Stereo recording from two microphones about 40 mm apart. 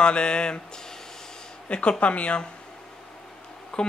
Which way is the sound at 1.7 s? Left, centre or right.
Left.